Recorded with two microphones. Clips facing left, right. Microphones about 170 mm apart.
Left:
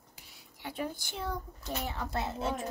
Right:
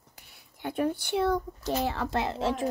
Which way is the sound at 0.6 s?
55° right (ahead or behind).